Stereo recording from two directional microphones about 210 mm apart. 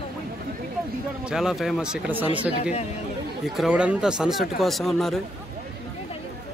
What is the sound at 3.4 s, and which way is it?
Speech, centre (ahead or behind).